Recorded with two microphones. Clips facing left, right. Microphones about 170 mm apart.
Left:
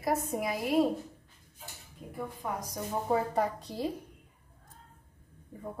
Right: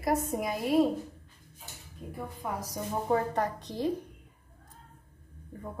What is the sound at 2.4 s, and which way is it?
A woman's voice, centre (ahead or behind).